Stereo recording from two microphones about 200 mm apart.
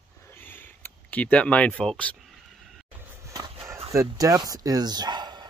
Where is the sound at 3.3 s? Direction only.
15° right (ahead or behind).